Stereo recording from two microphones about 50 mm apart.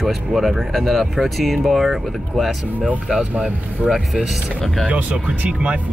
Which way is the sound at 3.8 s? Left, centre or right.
Right.